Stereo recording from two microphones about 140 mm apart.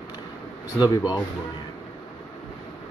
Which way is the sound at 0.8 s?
30° left (ahead or behind).